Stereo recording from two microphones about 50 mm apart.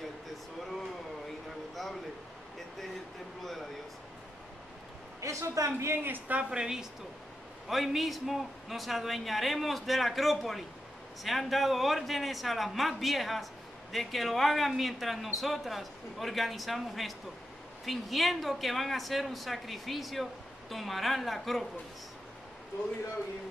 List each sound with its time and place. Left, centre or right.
5.2 s a woman's voice: right
6.0 s speech: right
6.5 s a woman's voice: centre
7.6 s a man's voice: centre